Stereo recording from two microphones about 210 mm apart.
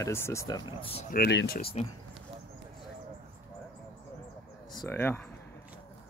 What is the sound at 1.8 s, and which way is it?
Speech, 30° left (ahead or behind).